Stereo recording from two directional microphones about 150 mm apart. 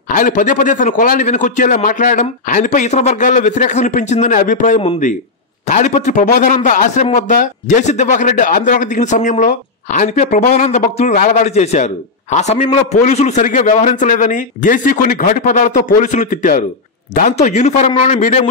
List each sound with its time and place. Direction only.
0.1 s a man's voice: 65° left (ahead or behind)
17.1 s a man's voice: 50° left (ahead or behind)